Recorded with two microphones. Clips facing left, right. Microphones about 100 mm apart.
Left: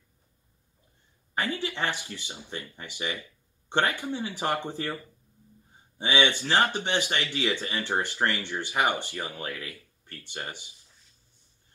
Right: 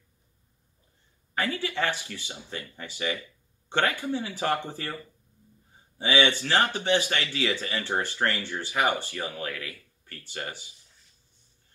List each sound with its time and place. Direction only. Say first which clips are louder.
1.3 s speech: right 1 dB; 20° left (ahead or behind)
5.9 s speech: right 1 dB; 20° left (ahead or behind)